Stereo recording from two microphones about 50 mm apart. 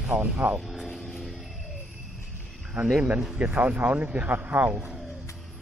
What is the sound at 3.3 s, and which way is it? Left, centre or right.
Speech, right.